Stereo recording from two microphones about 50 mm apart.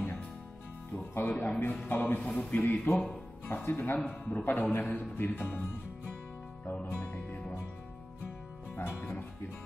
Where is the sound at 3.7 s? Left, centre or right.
Left.